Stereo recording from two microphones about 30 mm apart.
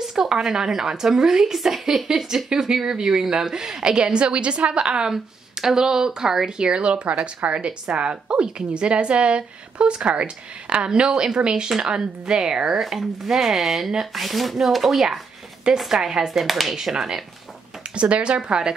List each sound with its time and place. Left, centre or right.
0.0 s a sound: centre
0.4 s a woman's voice: centre; by 5.1 s right
5.6 s a woman's voice: centre
6.6 s a woman's voice: right
10.9 s a woman's voice: right
13.3 s a woman's voice: centre
16.3 s speech: centre
17.9 s a woman's voice: right
18.5 s a woman's voice: right